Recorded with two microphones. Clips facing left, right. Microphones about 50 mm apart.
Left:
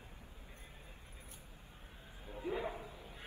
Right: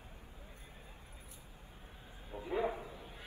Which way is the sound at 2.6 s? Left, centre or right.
Right.